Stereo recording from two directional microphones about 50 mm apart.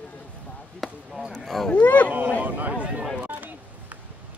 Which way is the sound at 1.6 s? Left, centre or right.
Left.